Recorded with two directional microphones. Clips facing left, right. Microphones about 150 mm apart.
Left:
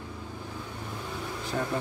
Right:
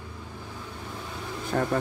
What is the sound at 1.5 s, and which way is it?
Speech, 55° right (ahead or behind).